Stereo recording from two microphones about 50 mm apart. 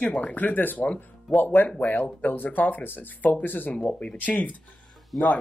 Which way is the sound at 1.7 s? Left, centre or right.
Left.